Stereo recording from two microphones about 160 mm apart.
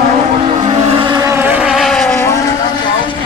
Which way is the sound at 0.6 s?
45° right (ahead or behind).